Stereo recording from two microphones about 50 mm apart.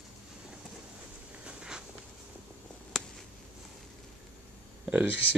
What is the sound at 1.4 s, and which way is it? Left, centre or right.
Walk, centre.